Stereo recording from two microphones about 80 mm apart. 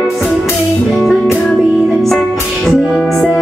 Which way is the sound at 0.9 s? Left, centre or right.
Centre.